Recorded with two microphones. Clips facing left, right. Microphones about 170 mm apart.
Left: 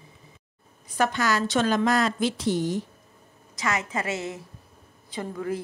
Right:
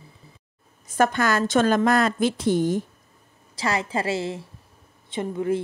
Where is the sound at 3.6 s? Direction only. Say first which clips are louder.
Right 3 dB; 30° right (ahead or behind).